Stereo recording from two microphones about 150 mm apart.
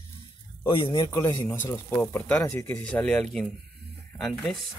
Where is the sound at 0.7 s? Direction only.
35° left (ahead or behind).